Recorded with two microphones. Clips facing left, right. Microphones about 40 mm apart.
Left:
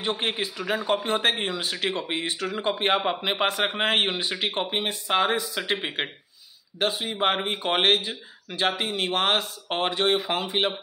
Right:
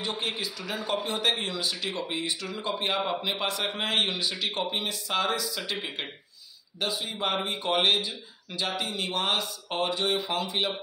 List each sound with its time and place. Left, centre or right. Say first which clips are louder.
0.0 s speech: left 4 dB; left